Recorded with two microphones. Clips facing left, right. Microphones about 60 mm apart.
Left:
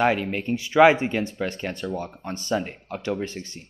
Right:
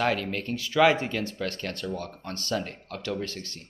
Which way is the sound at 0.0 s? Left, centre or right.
Centre.